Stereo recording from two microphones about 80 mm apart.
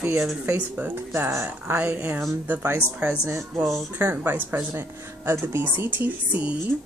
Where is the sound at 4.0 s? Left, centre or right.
Right.